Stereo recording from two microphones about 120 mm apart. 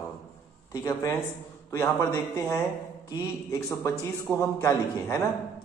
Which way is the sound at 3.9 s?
25° left (ahead or behind).